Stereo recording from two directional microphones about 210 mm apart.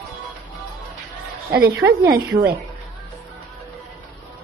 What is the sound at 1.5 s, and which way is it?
Speech, 50° right (ahead or behind).